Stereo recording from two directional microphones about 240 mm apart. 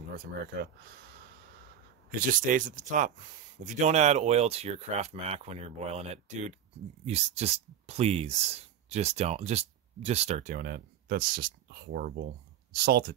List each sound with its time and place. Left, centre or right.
2.0 s speech: right